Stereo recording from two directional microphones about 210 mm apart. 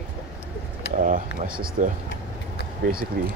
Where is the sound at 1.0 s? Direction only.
40° right (ahead or behind).